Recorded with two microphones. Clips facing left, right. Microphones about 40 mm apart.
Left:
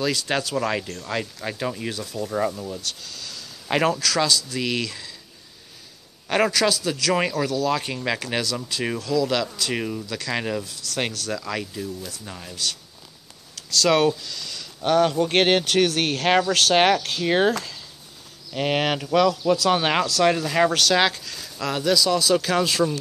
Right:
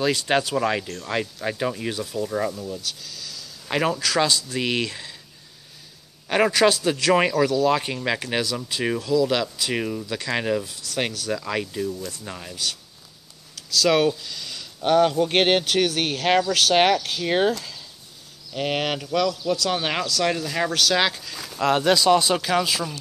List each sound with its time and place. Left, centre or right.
0.0 s speech: right
0.7 s speech: centre
2.1 s speech: centre
2.5 s speech: centre
2.8 s speech: centre
4.0 s speech: centre
6.2 s a man's voice: centre
6.5 s speech: right
7.9 s speech: centre
14.2 s speech: centre
20.7 s speech: centre
21.1 s speech: centre
21.4 s speech: right
22.4 s speech: centre